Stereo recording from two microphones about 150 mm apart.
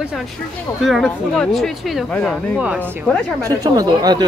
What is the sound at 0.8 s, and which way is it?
Speech, centre (ahead or behind).